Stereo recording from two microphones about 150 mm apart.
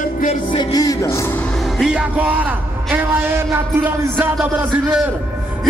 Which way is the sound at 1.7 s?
5° right (ahead or behind).